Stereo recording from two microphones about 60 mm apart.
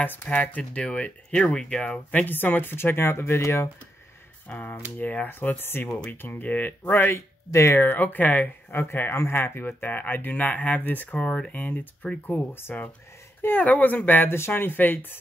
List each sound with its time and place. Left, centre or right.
0.0 s speech: left
2.2 s speech: left
4.5 s speech: left
7.2 s speech: left
9.1 s speech: left
9.4 s speech: left; by 12.8 s centre
13.4 s speech: left